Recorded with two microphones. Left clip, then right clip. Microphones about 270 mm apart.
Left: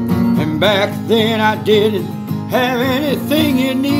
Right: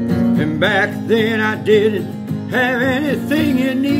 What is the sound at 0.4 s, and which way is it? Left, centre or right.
Music, left.